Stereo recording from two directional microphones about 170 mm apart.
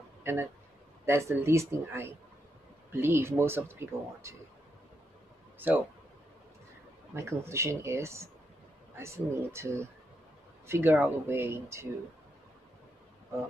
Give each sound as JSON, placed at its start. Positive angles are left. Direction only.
{"t": 0.2, "sound": "speech", "side_deg": -15}
{"t": 7.2, "sound": "speech", "side_deg": -15}